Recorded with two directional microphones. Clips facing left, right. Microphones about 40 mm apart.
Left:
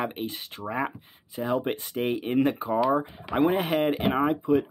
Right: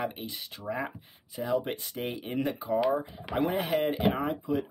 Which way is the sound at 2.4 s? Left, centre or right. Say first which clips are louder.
Left 6 dB; left.